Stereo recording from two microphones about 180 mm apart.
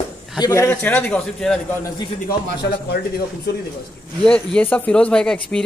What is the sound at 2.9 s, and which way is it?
Speech, 60° left (ahead or behind).